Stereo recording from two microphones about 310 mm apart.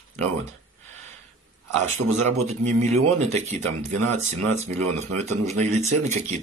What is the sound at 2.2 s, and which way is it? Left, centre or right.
Speech, right.